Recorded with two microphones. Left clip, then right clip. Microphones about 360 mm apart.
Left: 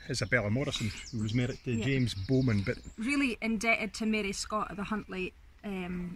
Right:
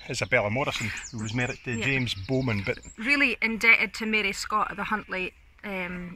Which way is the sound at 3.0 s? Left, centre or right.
Centre.